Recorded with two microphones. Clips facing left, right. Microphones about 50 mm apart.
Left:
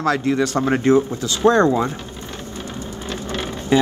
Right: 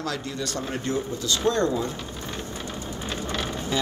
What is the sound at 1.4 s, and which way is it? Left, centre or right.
Speech, left.